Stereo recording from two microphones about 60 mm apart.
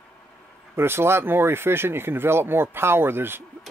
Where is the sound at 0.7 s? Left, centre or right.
Right.